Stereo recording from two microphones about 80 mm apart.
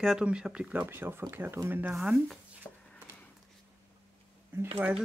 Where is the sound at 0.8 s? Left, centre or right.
Right.